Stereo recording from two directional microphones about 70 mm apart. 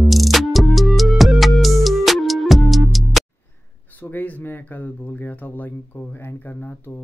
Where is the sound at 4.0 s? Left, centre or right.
Left.